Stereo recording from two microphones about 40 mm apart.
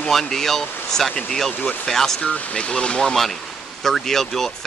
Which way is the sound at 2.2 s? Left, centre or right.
Left.